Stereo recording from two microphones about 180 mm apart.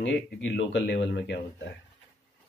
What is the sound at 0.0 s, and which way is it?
Speech, 85° left.